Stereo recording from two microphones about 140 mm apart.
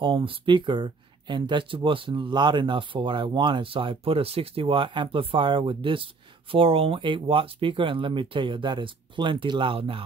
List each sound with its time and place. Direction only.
0.0 s speech: 35° right (ahead or behind)